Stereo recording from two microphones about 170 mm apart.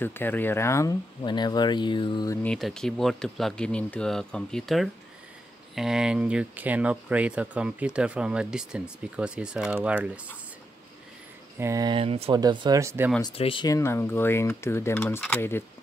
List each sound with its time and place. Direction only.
0.0 s speech: 10° left (ahead or behind); by 2.3 s 25° left (ahead or behind)
2.4 s speech: 5° left (ahead or behind)
11.5 s speech: 15° right (ahead or behind)
11.9 s speech: 35° right (ahead or behind)
12.4 s speech: 25° right (ahead or behind)
13.3 s speech: 35° left (ahead or behind)
13.7 s speech: 15° left (ahead or behind)